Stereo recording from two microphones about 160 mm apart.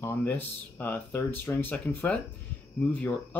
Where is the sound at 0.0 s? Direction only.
15° left (ahead or behind).